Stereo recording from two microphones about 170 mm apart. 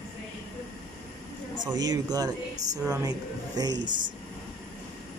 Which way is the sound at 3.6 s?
25° right (ahead or behind).